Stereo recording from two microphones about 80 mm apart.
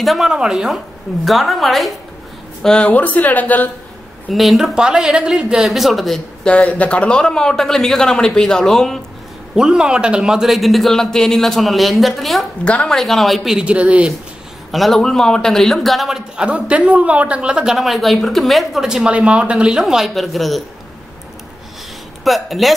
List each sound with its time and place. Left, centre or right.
0.0 s a man's voice: centre
2.9 s speech: left
4.3 s a man's voice: centre
6.4 s a man's voice: centre
9.6 s a man's voice: centre
12.6 s a man's voice: centre
12.9 s a man's voice: centre
14.7 s a man's voice: centre
16.3 s speech: centre
19.8 s a man's voice: centre
22.2 s a man's voice: centre